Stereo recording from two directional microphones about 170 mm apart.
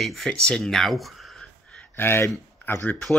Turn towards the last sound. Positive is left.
turn(degrees=10)  # may be behind; listen again after turning